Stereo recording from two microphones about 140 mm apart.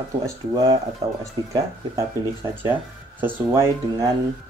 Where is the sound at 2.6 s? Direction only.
15° right (ahead or behind).